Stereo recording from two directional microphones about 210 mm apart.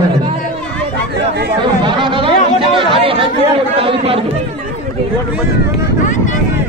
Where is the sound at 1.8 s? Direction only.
25° right (ahead or behind).